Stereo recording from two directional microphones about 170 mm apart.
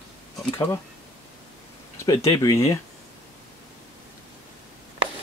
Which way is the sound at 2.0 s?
20° left (ahead or behind).